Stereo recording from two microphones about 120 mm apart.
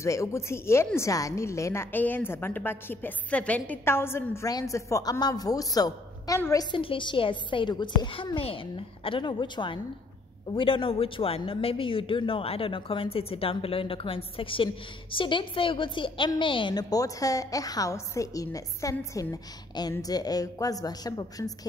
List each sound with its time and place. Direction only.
0.0 s a woman's voice: 25° left (ahead or behind)
8.4 s a woman's voice: 50° left (ahead or behind); by 21.5 s 30° left (ahead or behind)